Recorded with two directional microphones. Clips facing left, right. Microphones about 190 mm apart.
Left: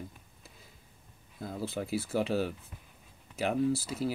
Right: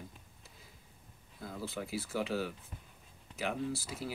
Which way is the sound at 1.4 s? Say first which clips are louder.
Left 5 dB; 35° left (ahead or behind).